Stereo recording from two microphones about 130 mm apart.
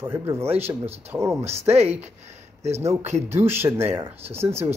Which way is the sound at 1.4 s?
55° right (ahead or behind).